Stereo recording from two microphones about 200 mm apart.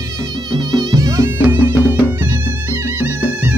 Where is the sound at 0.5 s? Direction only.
20° right (ahead or behind).